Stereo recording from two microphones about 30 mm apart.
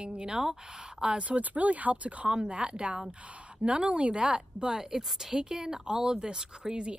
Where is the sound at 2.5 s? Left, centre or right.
Right.